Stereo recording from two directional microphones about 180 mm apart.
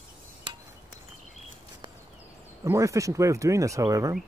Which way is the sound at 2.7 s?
15° right (ahead or behind).